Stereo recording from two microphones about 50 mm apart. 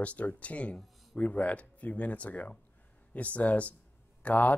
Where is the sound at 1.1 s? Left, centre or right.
Left.